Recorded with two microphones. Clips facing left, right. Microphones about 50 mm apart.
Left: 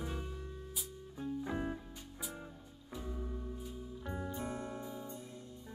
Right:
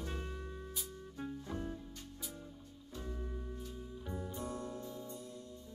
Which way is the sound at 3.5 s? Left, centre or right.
Centre.